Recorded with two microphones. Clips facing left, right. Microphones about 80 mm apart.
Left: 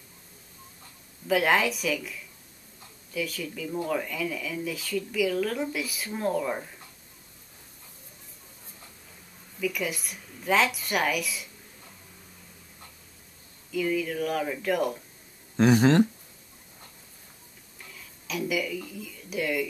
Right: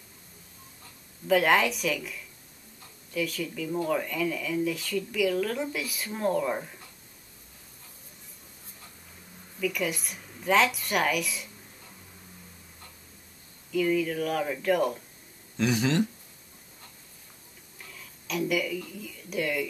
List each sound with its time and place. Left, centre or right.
1.2 s speech: centre
9.6 s speech: centre
13.7 s speech: centre
15.5 s speech: left
17.9 s speech: centre